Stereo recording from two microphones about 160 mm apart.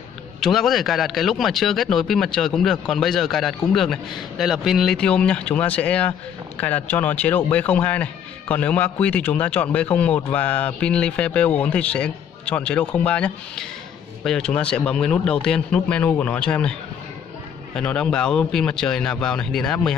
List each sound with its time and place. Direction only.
0.4 s a man's voice: centre (ahead or behind)
17.7 s a man's voice: 5° left (ahead or behind)